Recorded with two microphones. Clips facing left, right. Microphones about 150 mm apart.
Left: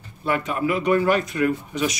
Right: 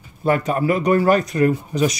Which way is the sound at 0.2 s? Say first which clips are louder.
Right 5 dB; 40° right (ahead or behind).